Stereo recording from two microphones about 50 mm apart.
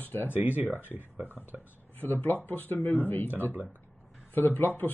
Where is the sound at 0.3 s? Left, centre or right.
Right.